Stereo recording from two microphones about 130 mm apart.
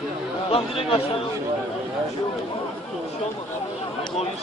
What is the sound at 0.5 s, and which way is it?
Speech, 45° left (ahead or behind).